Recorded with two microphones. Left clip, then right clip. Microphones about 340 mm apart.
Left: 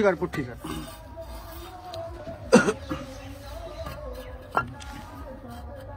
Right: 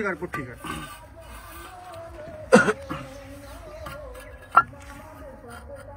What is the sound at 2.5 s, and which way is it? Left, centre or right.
Cough, right.